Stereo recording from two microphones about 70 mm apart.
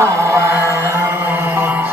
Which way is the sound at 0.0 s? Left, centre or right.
Right.